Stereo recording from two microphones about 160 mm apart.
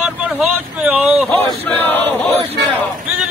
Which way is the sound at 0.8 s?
10° right (ahead or behind).